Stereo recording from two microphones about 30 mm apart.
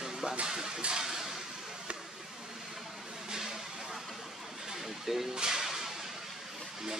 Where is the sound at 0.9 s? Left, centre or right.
Centre.